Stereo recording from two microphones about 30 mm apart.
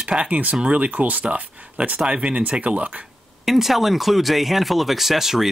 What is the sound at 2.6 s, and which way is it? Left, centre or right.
Speech, right.